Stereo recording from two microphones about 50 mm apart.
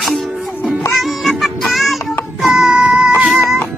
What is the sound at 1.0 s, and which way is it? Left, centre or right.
Music, centre.